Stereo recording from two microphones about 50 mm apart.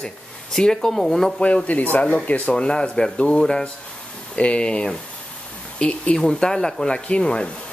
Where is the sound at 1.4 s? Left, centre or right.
Left.